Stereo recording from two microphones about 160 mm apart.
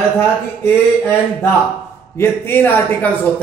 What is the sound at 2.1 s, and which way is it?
Speech, 15° left (ahead or behind).